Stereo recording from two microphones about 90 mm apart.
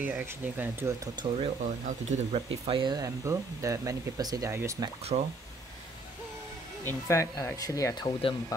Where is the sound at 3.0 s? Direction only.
35° right (ahead or behind).